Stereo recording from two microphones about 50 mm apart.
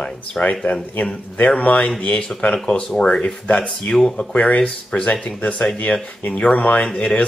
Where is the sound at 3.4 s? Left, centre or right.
Left.